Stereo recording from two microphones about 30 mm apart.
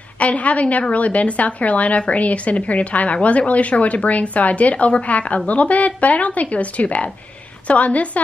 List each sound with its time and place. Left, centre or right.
0.2 s a woman's voice: left